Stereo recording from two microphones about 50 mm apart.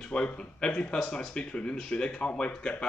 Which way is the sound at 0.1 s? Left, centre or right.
Centre.